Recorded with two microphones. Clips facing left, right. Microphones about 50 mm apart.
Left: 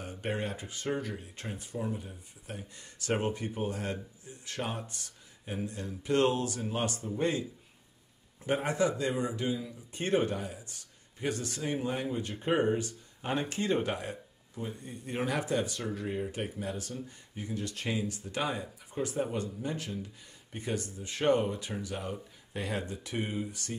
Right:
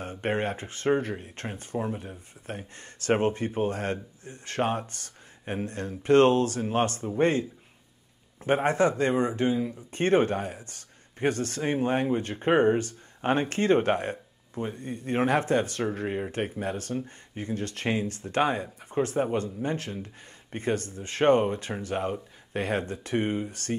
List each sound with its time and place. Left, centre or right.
0.0 s speech: right
8.5 s speech: right